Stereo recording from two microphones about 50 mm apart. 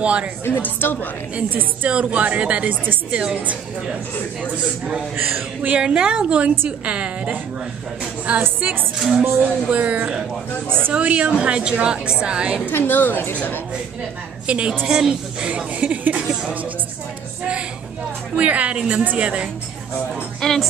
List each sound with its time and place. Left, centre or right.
0.0 s a woman's voice: right
0.6 s a woman's voice: left
1.5 s a woman's voice: right
1.9 s a woman's voice: right
5.7 s a woman's voice: right
12.7 s a woman's voice: left
14.4 s a woman's voice: right
14.9 s a woman's voice: centre
15.5 s a woman's voice: right
18.3 s a woman's voice: right
20.3 s speech: centre